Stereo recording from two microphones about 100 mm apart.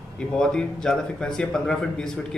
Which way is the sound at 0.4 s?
5° left (ahead or behind).